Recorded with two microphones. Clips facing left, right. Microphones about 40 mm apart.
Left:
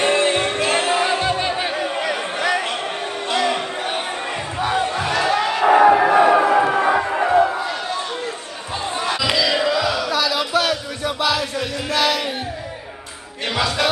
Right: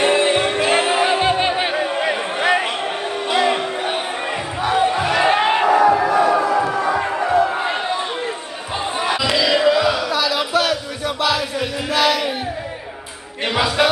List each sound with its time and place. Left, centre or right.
0.0 s music: centre
1.8 s a sound: centre
3.3 s crowd: centre
4.6 s battle cry: centre
4.8 s crowd: centre
5.2 s a sound: right
9.0 s battle cry: centre
11.9 s music: centre